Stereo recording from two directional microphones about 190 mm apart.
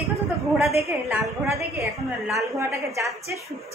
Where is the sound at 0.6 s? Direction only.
Centre (ahead or behind).